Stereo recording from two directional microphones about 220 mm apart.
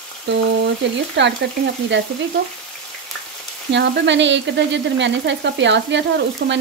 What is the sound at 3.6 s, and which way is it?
Frying, 55° right (ahead or behind).